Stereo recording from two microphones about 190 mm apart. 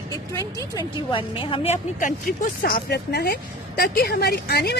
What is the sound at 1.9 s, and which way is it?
Speech, 45° left (ahead or behind).